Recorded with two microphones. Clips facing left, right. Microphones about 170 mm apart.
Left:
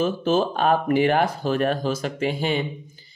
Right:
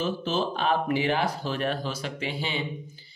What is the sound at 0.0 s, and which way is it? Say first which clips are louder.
Speech: left 6 dB; 50° left (ahead or behind).